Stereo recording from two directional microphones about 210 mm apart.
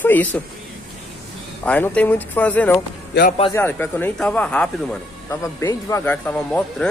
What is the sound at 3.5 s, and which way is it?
Speech, 10° left (ahead or behind).